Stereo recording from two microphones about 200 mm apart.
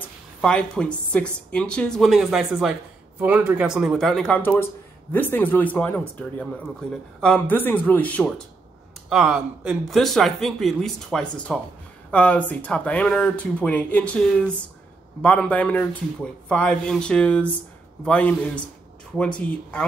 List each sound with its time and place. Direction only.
0.4 s speech: 5° left (ahead or behind)
9.1 s speech: 5° right (ahead or behind)
15.2 s speech: 5° left (ahead or behind)